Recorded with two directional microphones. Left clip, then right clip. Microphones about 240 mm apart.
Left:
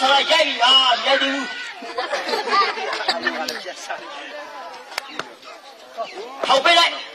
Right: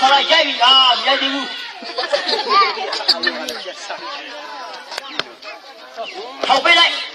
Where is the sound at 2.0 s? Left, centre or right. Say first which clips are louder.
Right 4 dB; left.